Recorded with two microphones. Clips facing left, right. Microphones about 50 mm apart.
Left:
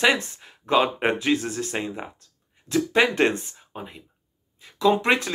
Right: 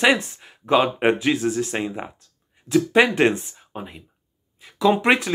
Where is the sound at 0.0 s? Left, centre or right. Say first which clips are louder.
Right 2 dB; centre.